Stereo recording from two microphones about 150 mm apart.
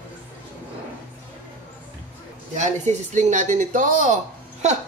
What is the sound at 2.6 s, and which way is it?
Speech, 50° right (ahead or behind).